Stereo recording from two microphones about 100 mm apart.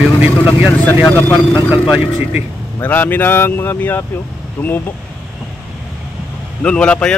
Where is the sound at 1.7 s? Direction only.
20° right (ahead or behind).